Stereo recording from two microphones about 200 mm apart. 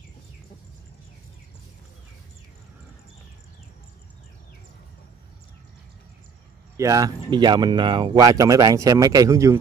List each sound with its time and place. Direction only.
6.8 s speech: 15° right (ahead or behind)